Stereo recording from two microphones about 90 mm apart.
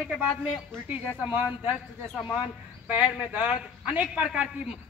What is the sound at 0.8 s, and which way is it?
Speech, 20° right (ahead or behind).